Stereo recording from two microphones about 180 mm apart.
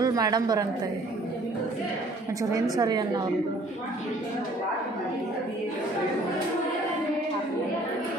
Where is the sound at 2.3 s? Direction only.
20° right (ahead or behind).